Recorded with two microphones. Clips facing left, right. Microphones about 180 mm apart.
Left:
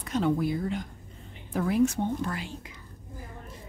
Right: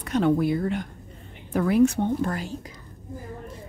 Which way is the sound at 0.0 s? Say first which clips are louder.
Right 5 dB; 65° right (ahead or behind).